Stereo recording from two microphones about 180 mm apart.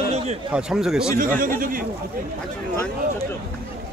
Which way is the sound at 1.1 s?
50° right (ahead or behind).